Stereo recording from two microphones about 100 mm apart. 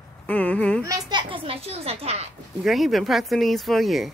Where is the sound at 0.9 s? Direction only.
45° right (ahead or behind); by 2.3 s 90° right.